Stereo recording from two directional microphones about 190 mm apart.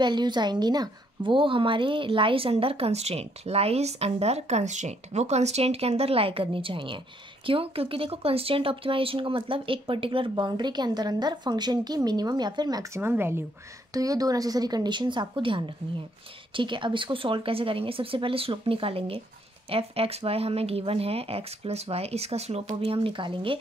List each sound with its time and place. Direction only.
0.0 s a woman's voice: 25° right (ahead or behind)